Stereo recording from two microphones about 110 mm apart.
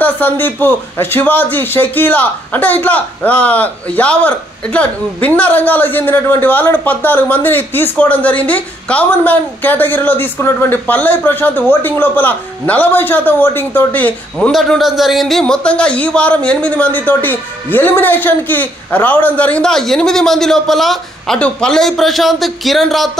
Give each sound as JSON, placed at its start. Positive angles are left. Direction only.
{"t": 0.0, "sound": "a man's voice", "side_deg": 15}
{"t": 14.5, "sound": "a man's voice", "side_deg": 0}